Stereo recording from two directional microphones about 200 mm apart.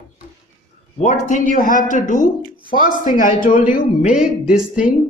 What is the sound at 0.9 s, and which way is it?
A man's voice, 40° left (ahead or behind).